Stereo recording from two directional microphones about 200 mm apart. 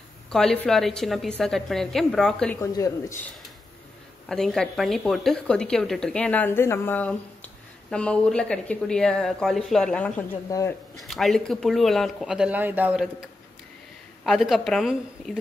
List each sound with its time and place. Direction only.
0.3 s a woman's voice: centre (ahead or behind)
2.6 s speech: 15° left (ahead or behind)
4.3 s a woman's voice: 5° left (ahead or behind)
11.0 s a woman's voice: centre (ahead or behind)
14.2 s a woman's voice: centre (ahead or behind)